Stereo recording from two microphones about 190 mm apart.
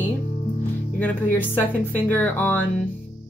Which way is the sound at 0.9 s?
10° left (ahead or behind).